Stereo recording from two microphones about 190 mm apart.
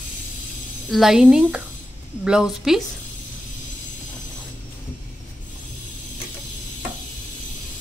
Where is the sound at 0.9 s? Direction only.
Centre (ahead or behind).